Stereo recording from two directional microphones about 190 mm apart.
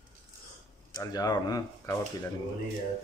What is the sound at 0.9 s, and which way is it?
Speech, 20° left (ahead or behind).